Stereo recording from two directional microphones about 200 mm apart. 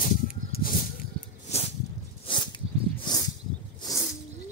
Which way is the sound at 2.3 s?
25° left (ahead or behind).